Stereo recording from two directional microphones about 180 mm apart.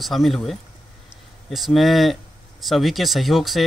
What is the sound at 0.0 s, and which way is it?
Speech, centre (ahead or behind).